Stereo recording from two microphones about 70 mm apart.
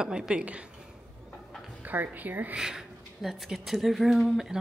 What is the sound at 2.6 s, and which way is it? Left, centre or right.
Speech, centre.